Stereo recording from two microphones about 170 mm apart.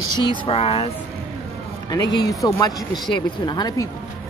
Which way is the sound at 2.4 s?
20° left (ahead or behind).